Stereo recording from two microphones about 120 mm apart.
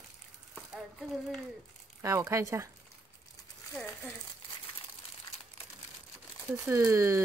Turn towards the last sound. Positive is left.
turn(degrees=-25)  # may be behind; listen again after turning